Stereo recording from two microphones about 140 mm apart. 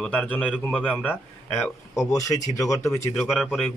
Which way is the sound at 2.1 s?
25° left (ahead or behind).